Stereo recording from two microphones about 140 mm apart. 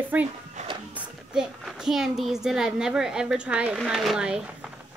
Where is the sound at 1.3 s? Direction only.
5° right (ahead or behind).